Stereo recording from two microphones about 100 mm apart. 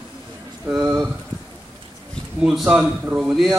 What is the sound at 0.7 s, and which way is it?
Speech, 10° right (ahead or behind).